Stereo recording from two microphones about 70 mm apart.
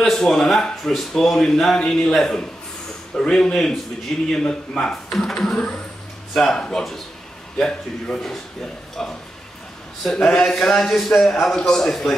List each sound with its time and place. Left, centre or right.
0.0 s a man's voice: centre
10.0 s a man's voice: centre